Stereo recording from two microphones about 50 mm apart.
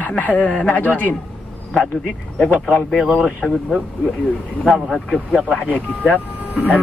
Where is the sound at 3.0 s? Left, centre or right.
Centre.